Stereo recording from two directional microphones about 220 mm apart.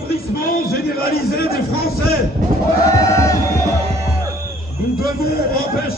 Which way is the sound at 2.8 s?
15° left (ahead or behind).